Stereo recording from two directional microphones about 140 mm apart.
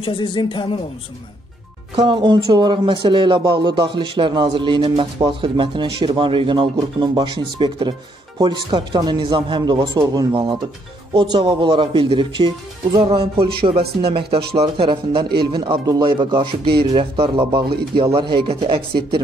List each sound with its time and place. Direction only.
0.0 s speech: 35° left (ahead or behind)
2.0 s speech: 30° right (ahead or behind)